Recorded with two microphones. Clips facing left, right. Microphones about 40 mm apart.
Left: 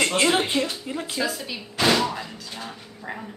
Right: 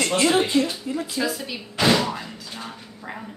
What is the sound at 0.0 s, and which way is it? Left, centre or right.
Speech, left.